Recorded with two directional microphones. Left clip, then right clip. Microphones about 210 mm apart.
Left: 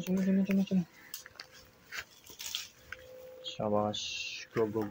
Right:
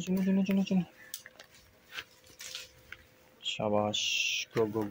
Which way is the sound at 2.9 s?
20° right (ahead or behind).